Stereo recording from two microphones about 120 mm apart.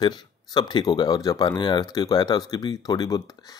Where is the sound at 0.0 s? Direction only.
35° left (ahead or behind).